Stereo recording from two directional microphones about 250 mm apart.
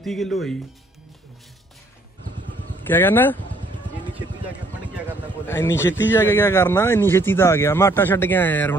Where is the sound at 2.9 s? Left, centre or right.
Centre.